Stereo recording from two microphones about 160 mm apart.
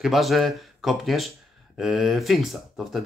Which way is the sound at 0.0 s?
Centre (ahead or behind).